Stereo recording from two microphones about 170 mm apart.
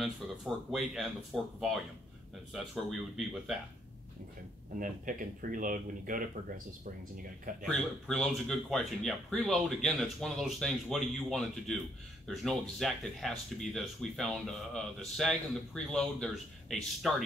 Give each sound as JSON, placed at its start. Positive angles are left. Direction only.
{"t": 0.7, "sound": "speech", "side_deg": 0}
{"t": 4.7, "sound": "speech", "side_deg": -50}
{"t": 7.6, "sound": "speech", "side_deg": 5}